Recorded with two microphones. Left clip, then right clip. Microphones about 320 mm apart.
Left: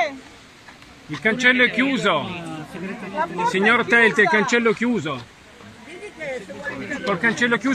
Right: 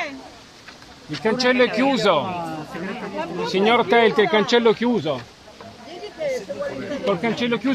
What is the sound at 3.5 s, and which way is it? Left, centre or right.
Speech, centre.